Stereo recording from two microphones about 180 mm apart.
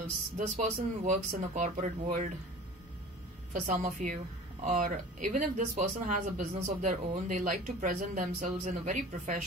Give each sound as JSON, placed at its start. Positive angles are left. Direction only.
{"t": 0.4, "sound": "speech", "side_deg": -45}
{"t": 3.5, "sound": "speech", "side_deg": -45}